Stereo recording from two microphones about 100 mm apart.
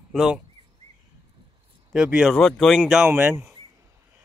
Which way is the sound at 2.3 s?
5° left (ahead or behind).